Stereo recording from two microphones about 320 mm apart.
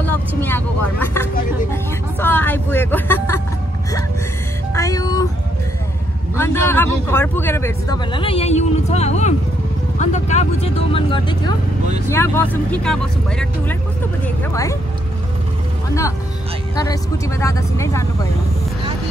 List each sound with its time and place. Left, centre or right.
0.4 s speech: centre
1.7 s vehicle: centre
4.7 s music: centre
6.3 s speech: centre
16.7 s speech: centre